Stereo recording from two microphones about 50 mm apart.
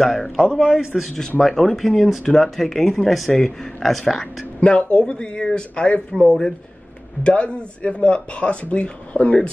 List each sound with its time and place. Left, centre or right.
0.4 s a man's voice: centre
1.4 s speech: centre
4.6 s speech: left